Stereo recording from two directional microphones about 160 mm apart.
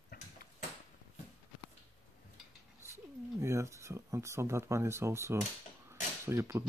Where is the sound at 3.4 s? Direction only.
15° right (ahead or behind).